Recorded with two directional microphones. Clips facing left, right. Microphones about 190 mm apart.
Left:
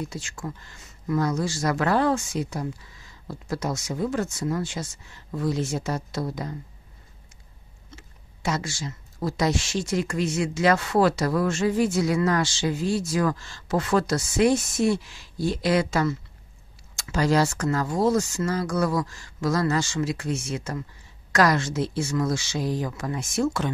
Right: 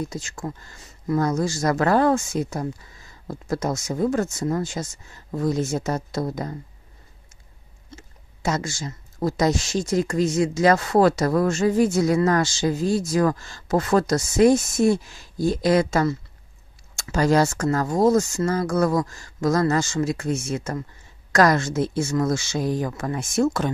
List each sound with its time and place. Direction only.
0.1 s speech: 40° right (ahead or behind)
7.9 s speech: 45° right (ahead or behind)